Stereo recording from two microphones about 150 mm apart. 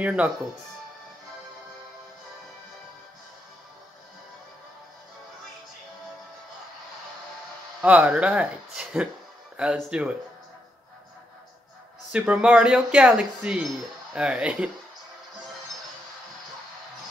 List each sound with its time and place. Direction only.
0.0 s speech: 10° right (ahead or behind)
7.8 s speech: 10° right (ahead or behind)
12.1 s speech: 10° right (ahead or behind)